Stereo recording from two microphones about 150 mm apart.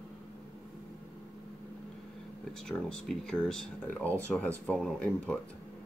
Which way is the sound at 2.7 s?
5° left (ahead or behind).